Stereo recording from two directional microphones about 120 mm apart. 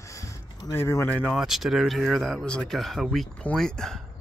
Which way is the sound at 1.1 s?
5° left (ahead or behind).